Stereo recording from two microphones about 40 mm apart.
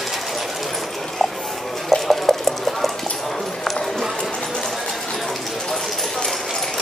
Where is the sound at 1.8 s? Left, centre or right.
Centre.